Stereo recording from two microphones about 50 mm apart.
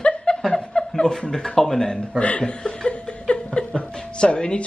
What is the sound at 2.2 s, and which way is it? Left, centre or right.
Speech, left.